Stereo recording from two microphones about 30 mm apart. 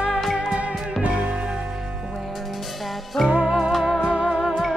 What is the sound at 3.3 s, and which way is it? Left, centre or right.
Music, right.